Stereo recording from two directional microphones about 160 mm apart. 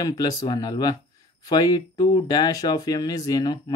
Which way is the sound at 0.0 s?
25° left (ahead or behind).